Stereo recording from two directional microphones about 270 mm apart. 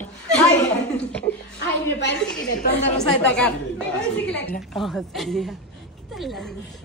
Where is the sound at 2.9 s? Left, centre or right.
Centre.